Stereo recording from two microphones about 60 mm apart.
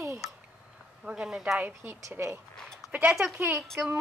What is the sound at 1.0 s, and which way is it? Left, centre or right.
Speech, centre.